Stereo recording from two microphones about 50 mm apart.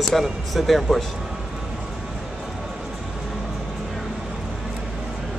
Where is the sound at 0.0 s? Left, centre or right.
Centre.